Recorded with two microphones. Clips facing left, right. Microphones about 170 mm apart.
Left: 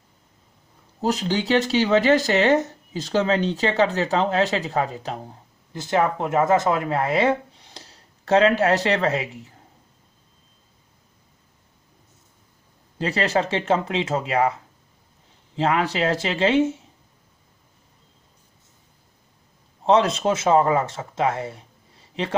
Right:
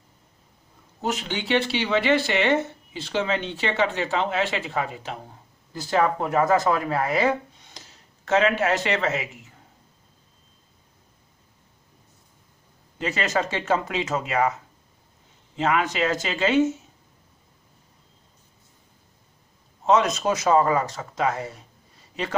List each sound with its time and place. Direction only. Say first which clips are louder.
1.0 s speech: left 5 dB; 35° left (ahead or behind)
5.7 s speech: left 1 dB; 20° left (ahead or behind)
13.0 s speech: left 3 dB; 35° left (ahead or behind)
19.8 s speech: left 2 dB; 30° left (ahead or behind)